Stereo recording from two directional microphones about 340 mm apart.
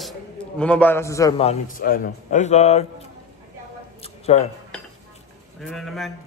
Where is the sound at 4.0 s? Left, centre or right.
Centre.